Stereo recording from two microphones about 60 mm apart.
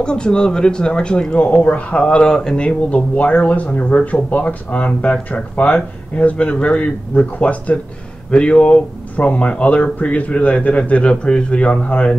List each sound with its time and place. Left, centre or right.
0.0 s speech: centre